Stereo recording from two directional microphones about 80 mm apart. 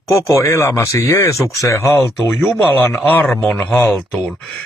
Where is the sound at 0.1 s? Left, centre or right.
Left.